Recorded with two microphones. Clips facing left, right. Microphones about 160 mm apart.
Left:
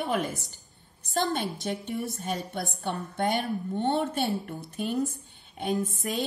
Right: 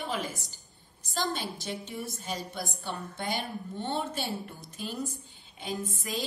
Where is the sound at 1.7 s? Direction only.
50° left (ahead or behind).